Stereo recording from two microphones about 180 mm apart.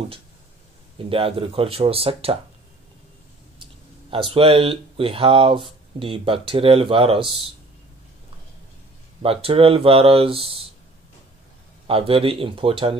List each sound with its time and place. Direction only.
0.9 s speech: 30° right (ahead or behind)
4.1 s speech: 30° right (ahead or behind)
9.2 s speech: 30° right (ahead or behind)
11.9 s speech: 30° right (ahead or behind)